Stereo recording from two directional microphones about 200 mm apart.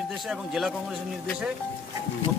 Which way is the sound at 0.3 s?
Centre (ahead or behind).